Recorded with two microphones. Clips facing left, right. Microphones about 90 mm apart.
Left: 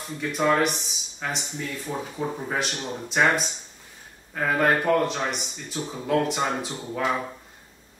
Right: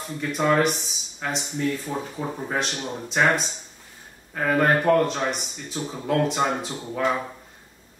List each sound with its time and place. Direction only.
0.2 s speech: centre (ahead or behind)